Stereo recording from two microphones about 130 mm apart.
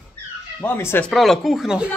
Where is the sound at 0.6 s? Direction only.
15° left (ahead or behind).